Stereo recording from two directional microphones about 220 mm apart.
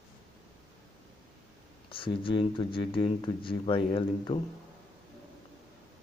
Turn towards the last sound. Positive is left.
turn(degrees=25)  # may be behind; listen again after turning